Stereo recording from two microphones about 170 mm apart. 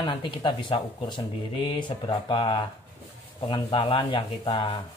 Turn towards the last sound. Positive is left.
turn(degrees=30)  # may be behind; listen again after turning